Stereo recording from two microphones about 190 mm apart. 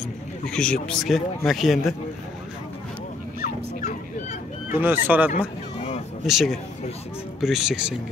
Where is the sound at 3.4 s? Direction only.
40° left (ahead or behind).